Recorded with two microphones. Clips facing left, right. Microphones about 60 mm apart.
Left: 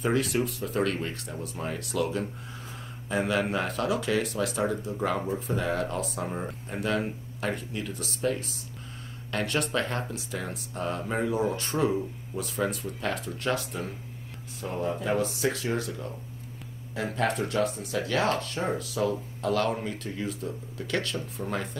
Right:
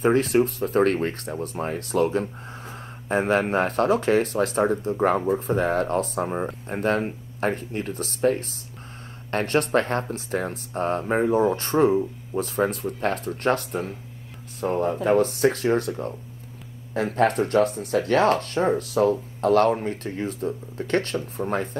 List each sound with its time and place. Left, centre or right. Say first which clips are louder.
0.0 s speech: right 7 dB; right